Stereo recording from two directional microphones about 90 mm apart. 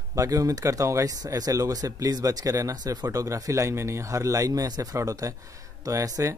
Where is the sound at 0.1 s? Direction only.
40° right (ahead or behind).